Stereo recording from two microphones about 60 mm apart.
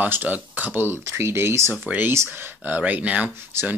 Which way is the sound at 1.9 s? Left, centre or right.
Right.